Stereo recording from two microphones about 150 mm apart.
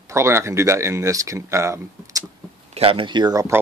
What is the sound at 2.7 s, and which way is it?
Speech, 35° right (ahead or behind).